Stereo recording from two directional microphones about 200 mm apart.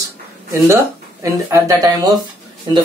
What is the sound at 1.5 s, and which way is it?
Speech, 20° right (ahead or behind).